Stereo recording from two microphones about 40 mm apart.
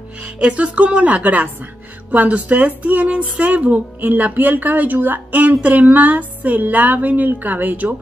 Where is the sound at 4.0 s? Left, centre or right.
Right.